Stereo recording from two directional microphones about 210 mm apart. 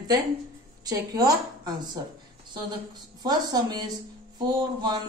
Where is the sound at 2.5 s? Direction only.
20° right (ahead or behind).